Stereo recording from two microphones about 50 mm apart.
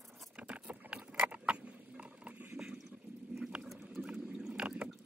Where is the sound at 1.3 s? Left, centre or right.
Right.